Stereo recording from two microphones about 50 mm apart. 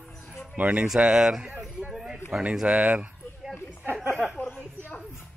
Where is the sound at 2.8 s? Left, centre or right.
Right.